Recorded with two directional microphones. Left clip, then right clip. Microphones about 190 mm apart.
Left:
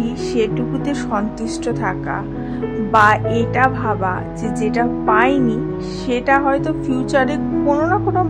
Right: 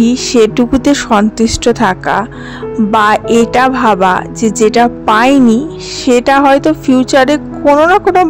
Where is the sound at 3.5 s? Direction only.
55° right (ahead or behind).